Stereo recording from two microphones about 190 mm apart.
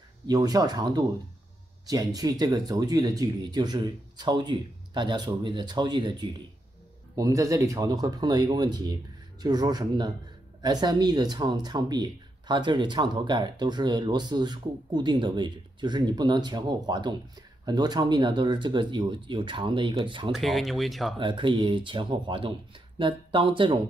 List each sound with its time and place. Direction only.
0.3 s speech: 20° right (ahead or behind)
20.3 s speech: centre (ahead or behind)
21.2 s speech: 25° right (ahead or behind)